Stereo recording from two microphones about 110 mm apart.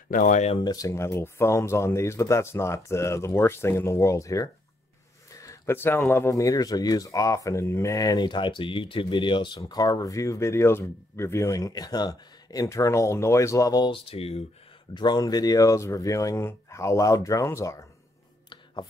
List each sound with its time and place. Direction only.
0.6 s speech: 35° left (ahead or behind)
9.6 s speech: 35° left (ahead or behind)
14.0 s speech: 65° left (ahead or behind)
15.0 s speech: 40° left (ahead or behind)